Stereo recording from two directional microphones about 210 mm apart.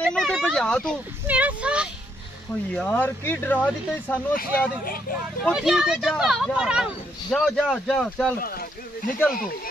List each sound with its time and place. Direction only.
0.0 s speech: centre (ahead or behind)
1.2 s speech: 5° right (ahead or behind)
2.7 s speech: 5° left (ahead or behind)
4.4 s speech: 45° left (ahead or behind)
5.4 s speech: centre (ahead or behind)
8.4 s speech: 45° left (ahead or behind)